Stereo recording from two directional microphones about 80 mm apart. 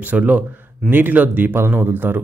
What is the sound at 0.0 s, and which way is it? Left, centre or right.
Speech, centre.